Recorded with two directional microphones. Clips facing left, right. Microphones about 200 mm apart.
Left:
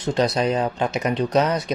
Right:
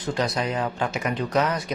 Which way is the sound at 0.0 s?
25° left (ahead or behind).